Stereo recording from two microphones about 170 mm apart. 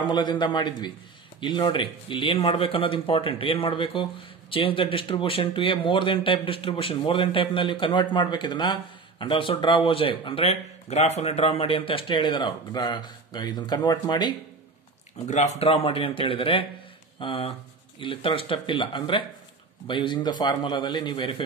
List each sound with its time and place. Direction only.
0.1 s speech: 25° left (ahead or behind)
15.2 s speech: 45° left (ahead or behind); by 21.4 s 30° left (ahead or behind)